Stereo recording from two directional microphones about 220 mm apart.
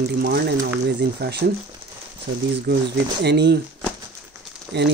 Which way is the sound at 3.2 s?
50° right (ahead or behind).